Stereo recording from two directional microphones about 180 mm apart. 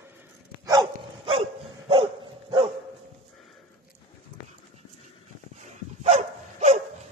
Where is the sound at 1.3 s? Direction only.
30° right (ahead or behind).